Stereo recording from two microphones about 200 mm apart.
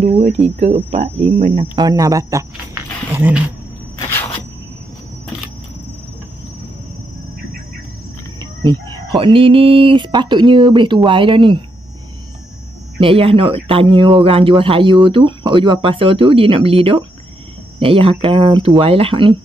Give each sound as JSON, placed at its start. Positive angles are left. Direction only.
{"t": 0.0, "sound": "speech", "side_deg": -30}
{"t": 8.4, "sound": "chicken", "side_deg": -20}
{"t": 11.1, "sound": "speech", "side_deg": -25}
{"t": 13.0, "sound": "speech", "side_deg": -30}